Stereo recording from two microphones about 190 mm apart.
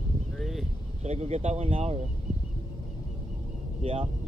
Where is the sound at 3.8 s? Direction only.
30° right (ahead or behind).